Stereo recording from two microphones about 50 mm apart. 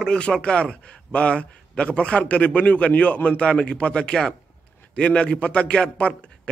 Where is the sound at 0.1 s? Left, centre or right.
Centre.